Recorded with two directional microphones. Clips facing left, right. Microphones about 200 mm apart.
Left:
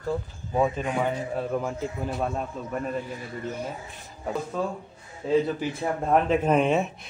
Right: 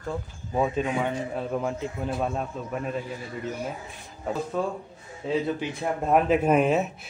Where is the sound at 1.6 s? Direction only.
Centre (ahead or behind).